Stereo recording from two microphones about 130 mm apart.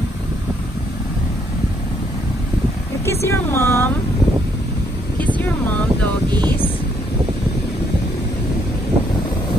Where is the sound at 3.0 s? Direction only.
20° left (ahead or behind).